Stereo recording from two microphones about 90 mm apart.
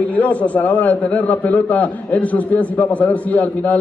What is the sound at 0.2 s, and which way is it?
A man's voice, 15° left (ahead or behind).